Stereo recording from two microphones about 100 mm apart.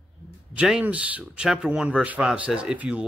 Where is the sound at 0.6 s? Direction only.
10° right (ahead or behind).